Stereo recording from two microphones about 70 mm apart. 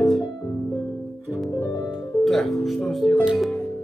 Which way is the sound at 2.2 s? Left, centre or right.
Centre.